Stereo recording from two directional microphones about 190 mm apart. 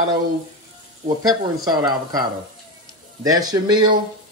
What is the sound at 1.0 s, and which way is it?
Speech, 20° right (ahead or behind).